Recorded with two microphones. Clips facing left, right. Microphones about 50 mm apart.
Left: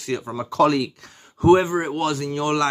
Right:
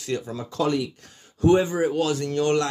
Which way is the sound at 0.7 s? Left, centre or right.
Left.